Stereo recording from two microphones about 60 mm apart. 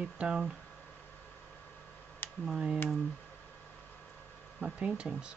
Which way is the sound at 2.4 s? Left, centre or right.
Centre.